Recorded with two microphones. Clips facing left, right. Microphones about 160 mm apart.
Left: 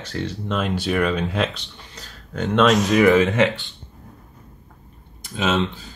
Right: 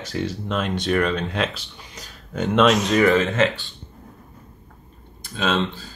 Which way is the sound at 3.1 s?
15° left (ahead or behind).